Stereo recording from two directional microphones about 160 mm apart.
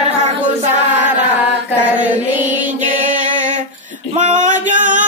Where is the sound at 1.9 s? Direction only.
10° right (ahead or behind).